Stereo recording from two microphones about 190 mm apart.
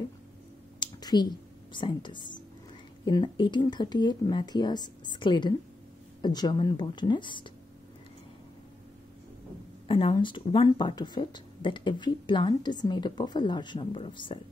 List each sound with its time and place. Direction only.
0.7 s a sound: 20° left (ahead or behind)
3.1 s speech: 25° left (ahead or behind)
9.8 s speech: 25° left (ahead or behind)